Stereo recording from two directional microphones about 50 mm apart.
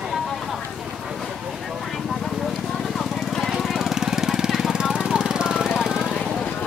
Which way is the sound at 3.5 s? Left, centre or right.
Centre.